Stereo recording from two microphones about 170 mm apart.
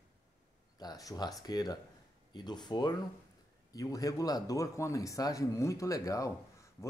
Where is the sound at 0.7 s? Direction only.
20° left (ahead or behind).